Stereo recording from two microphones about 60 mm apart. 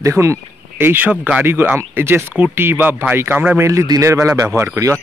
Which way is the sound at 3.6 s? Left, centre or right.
Right.